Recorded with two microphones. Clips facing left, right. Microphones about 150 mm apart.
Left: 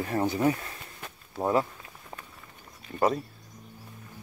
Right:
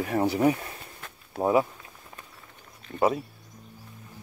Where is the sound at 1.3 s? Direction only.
60° right (ahead or behind).